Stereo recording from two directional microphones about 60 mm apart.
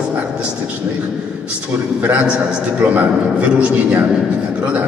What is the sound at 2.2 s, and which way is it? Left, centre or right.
A man's voice, centre.